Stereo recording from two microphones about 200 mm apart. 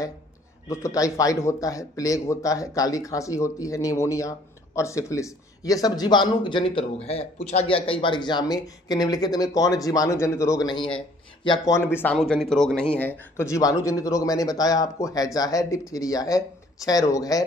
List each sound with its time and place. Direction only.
0.7 s speech: 15° left (ahead or behind)